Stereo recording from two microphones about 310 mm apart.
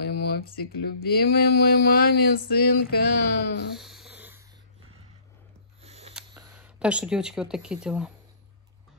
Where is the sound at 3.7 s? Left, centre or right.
Centre.